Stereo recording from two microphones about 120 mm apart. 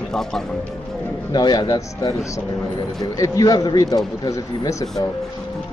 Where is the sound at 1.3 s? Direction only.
35° left (ahead or behind).